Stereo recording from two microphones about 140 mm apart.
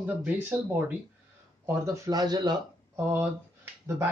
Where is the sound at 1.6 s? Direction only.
25° right (ahead or behind).